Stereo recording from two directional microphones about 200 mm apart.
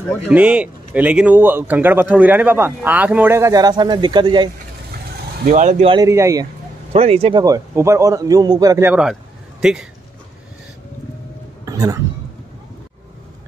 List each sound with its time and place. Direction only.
0.3 s speech: 5° right (ahead or behind); by 4.5 s 20° right (ahead or behind)
5.4 s speech: 45° right (ahead or behind)
5.9 s speech: 15° right (ahead or behind)
6.9 s speech: 30° right (ahead or behind); by 9.8 s 5° right (ahead or behind)
11.6 s a sound: 20° right (ahead or behind)